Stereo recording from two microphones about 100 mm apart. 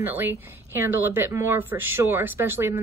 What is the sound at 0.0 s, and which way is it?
A woman's voice, 20° right (ahead or behind).